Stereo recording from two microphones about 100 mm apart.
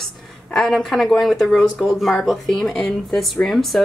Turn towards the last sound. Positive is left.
turn(degrees=0)  # may be behind; listen again after turning